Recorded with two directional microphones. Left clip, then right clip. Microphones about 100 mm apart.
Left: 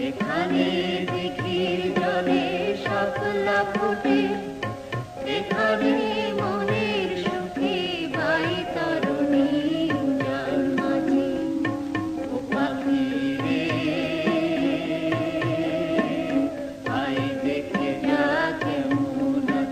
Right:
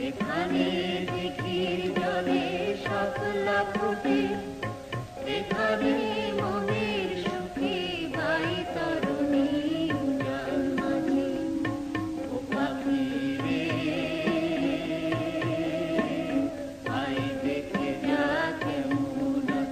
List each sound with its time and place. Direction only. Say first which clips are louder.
0.4 s music: left 4 dB; 35° left (ahead or behind)
5.6 s music: left 4 dB; 30° left (ahead or behind)
9.0 s music: left 5 dB; 35° left (ahead or behind)
12.5 s music: left 4 dB; 30° left (ahead or behind)
17.5 s music: left 4 dB; 35° left (ahead or behind)